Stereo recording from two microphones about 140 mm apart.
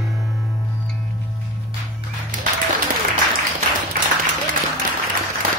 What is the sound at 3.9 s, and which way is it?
Applause, 85° right.